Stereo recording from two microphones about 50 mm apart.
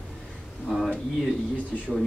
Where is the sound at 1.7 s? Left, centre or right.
Centre.